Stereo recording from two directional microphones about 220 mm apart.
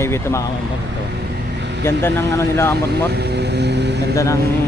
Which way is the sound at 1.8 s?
10° left (ahead or behind).